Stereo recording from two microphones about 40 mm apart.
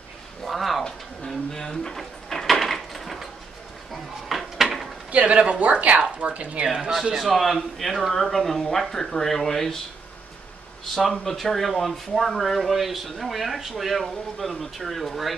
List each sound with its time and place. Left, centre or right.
0.5 s speech: centre
0.8 s speech: centre
2.0 s a sound: centre
5.1 s speech: right
6.8 s speech: centre
11.0 s speech: centre